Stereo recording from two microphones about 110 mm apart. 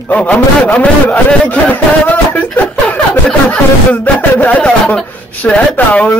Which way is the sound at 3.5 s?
15° left (ahead or behind).